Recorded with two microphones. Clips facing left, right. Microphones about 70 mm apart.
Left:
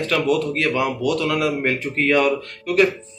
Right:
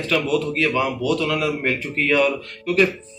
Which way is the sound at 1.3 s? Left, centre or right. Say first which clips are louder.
Left 1 dB; left.